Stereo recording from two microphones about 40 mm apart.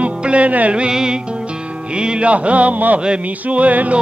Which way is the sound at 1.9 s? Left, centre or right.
Right.